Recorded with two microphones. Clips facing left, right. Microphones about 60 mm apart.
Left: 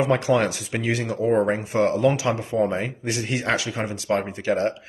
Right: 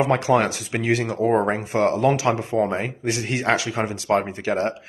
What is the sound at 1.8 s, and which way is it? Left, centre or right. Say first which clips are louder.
Speech: right 1 dB; right.